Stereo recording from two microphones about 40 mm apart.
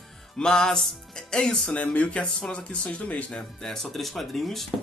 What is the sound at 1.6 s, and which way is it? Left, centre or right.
Speech, left.